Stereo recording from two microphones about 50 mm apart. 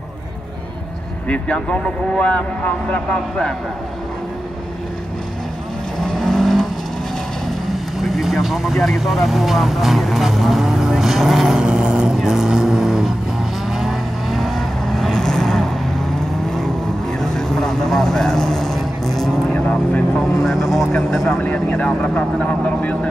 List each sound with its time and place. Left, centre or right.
1.3 s speech: left
5.9 s vehicle: centre
7.7 s vehicle: centre
9.0 s speech: centre
11.6 s vehicle: centre
12.2 s vehicle: centre
17.2 s vehicle: centre
19.5 s speech: centre
21.6 s speech: left